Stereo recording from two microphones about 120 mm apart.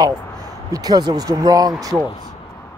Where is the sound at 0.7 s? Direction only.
35° right (ahead or behind).